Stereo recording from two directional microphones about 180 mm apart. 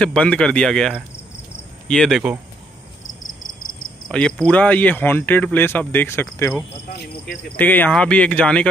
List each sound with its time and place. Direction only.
0.0 s speech: 5° left (ahead or behind)
4.1 s speech: 5° left (ahead or behind)
6.9 s speech: 60° left (ahead or behind)
7.5 s speech: 10° left (ahead or behind)